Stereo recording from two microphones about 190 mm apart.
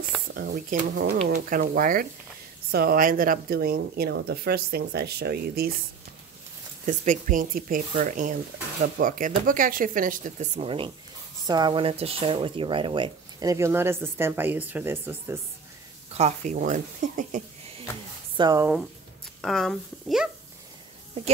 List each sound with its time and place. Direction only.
0.3 s a woman's voice: 50° right (ahead or behind)
1.1 s a woman's voice: 40° right (ahead or behind); by 5.7 s 55° right (ahead or behind)
6.9 s a woman's voice: 40° right (ahead or behind); by 15.3 s 10° right (ahead or behind)
16.2 s speech: 35° right (ahead or behind)
18.3 s speech: 20° right (ahead or behind)
19.4 s speech: centre (ahead or behind)